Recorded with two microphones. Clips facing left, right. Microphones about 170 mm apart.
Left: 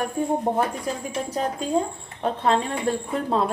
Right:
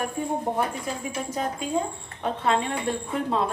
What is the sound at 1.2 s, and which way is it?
Speech, 35° left (ahead or behind).